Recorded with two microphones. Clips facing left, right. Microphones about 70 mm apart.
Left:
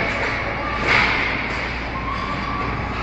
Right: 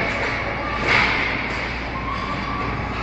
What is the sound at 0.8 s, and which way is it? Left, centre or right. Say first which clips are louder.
Whip: left 1 dB; left.